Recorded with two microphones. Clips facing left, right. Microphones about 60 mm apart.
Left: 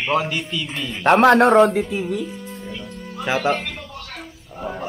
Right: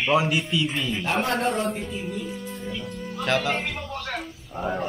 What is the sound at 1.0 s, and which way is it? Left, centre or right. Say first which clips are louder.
Speech: left 14 dB; left.